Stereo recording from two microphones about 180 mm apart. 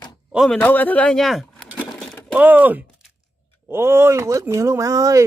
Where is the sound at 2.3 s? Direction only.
10° right (ahead or behind).